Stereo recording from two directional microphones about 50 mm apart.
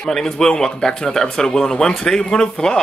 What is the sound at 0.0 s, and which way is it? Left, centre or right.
Speech, centre.